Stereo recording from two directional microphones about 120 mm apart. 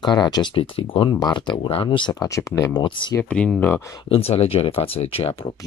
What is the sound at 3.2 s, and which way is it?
Speech, 10° left (ahead or behind).